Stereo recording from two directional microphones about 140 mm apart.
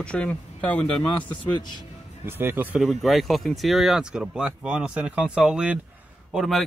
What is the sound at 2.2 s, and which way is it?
Speech, 15° right (ahead or behind).